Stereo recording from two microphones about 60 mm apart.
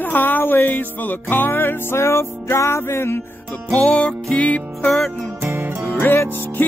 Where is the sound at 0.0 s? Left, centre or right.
Left.